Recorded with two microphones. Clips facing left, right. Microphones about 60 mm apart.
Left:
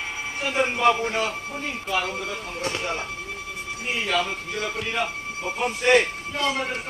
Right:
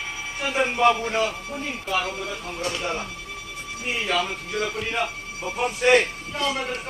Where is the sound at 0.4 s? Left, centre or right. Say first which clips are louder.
Right 1 dB; centre.